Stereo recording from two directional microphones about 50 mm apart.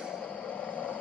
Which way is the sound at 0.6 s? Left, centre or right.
Left.